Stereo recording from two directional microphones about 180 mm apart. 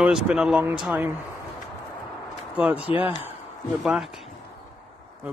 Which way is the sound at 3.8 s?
Centre (ahead or behind).